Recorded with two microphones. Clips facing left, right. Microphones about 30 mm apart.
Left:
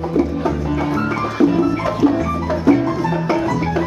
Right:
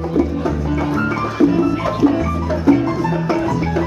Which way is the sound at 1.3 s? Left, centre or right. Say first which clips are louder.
Even; centre.